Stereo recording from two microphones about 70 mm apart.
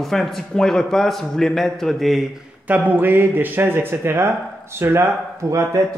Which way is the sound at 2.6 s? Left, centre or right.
Right.